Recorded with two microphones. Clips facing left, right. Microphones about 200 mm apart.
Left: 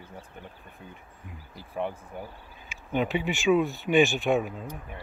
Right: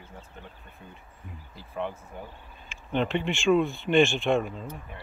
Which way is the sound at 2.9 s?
5° left (ahead or behind).